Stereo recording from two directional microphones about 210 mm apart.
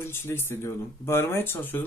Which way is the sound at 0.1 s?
10° left (ahead or behind).